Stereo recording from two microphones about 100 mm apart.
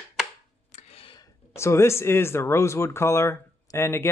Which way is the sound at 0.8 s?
75° left (ahead or behind).